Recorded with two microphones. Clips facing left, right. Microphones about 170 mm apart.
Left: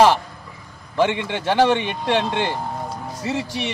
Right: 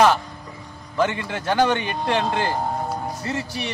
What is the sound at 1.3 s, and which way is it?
Speech, centre (ahead or behind).